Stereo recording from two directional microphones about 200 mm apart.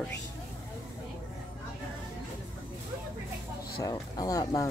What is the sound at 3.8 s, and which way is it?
Speech, 20° left (ahead or behind).